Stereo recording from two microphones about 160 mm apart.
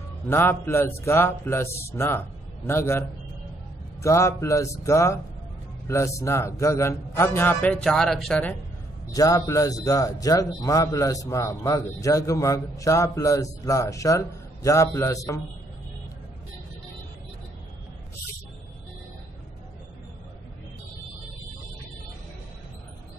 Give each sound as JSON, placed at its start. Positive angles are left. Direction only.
{"t": 0.3, "sound": "a man's voice", "side_deg": 15}
{"t": 9.1, "sound": "a man's voice", "side_deg": 20}